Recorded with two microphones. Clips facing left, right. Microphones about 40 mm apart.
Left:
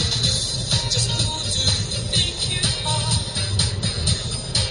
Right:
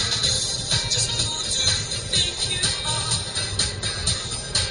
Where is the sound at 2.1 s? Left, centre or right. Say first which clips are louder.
Left 1 dB; left.